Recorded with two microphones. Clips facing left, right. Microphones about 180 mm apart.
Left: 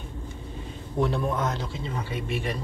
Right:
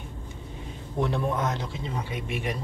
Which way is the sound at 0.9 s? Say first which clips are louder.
Left 1 dB; 20° right (ahead or behind).